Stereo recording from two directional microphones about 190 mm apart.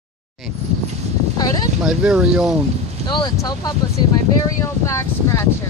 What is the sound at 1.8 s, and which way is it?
Speech, 5° right (ahead or behind).